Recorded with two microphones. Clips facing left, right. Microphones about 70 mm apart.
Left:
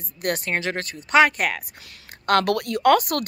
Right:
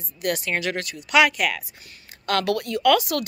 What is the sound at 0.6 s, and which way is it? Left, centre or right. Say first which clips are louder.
Speech: even; left.